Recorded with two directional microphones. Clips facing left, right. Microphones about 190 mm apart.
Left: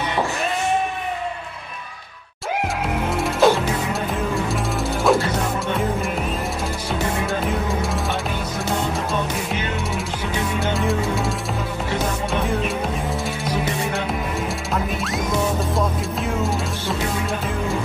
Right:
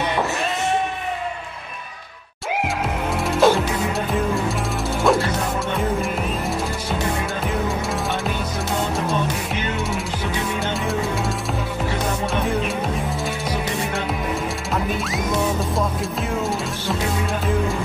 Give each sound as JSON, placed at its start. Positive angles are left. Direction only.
{"t": 3.2, "sound": "music", "side_deg": 0}
{"t": 5.1, "sound": "music", "side_deg": 0}
{"t": 7.4, "sound": "music", "side_deg": 0}
{"t": 10.8, "sound": "music", "side_deg": 0}
{"t": 12.3, "sound": "music", "side_deg": 0}
{"t": 14.7, "sound": "music", "side_deg": 0}